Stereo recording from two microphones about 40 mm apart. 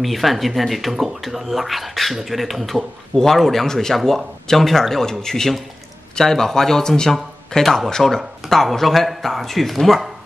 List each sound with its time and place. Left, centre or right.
0.0 s speech: centre